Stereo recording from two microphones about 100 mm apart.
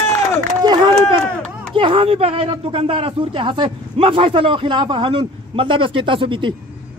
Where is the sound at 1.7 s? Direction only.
65° right (ahead or behind).